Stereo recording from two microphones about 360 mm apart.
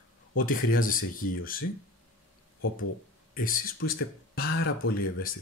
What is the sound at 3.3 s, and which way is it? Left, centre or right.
Speech, left.